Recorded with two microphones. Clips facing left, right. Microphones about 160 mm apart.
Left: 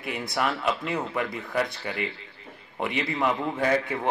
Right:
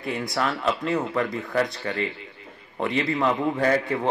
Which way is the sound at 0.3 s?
5° left (ahead or behind).